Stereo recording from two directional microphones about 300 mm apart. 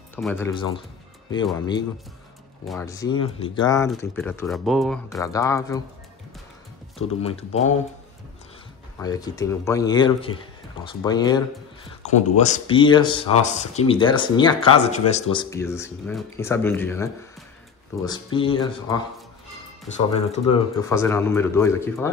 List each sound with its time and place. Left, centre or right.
0.1 s speech: centre
7.0 s speech: centre
8.9 s speech: centre
20.2 s speech: left
20.9 s speech: centre